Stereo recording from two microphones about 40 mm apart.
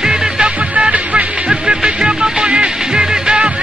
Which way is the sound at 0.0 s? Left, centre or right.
Centre.